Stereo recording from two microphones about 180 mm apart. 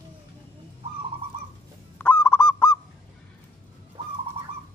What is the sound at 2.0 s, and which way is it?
Goose, 10° left (ahead or behind).